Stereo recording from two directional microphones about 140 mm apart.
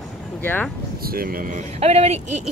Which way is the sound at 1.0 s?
90° right.